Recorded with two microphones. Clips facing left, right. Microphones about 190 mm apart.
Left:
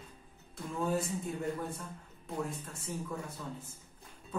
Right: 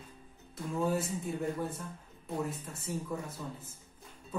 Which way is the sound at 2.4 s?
5° right (ahead or behind).